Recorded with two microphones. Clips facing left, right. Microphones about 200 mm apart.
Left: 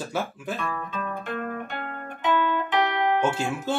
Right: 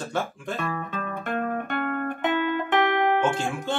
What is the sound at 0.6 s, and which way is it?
Speech, 55° right (ahead or behind).